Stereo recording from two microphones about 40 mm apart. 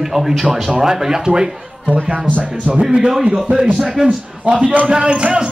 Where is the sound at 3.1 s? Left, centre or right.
Centre.